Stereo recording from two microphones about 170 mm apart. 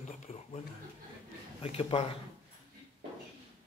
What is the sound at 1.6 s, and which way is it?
Speech, 35° left (ahead or behind).